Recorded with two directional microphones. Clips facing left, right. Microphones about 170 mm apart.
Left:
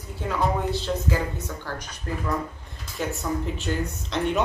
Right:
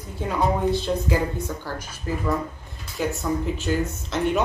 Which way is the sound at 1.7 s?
5° right (ahead or behind).